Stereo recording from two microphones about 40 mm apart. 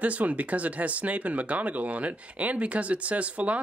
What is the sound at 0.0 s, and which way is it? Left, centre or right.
Speech, right.